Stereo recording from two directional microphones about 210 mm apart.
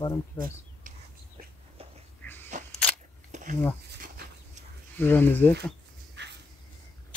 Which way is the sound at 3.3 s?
35° right (ahead or behind).